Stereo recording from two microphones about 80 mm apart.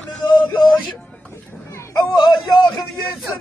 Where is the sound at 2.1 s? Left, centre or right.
Left.